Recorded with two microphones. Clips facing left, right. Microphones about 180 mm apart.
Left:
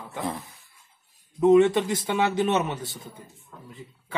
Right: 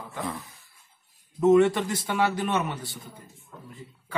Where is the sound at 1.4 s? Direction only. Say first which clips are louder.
Left 2 dB; 15° left (ahead or behind).